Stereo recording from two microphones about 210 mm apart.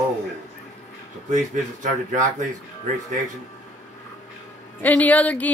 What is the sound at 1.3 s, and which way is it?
Speech, 40° right (ahead or behind).